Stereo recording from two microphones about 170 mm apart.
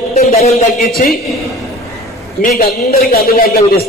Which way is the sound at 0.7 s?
60° left (ahead or behind).